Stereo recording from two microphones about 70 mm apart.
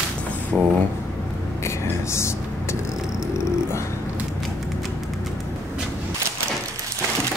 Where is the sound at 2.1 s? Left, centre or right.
Left.